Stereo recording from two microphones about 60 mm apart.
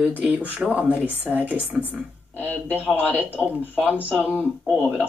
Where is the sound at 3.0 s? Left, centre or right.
Right.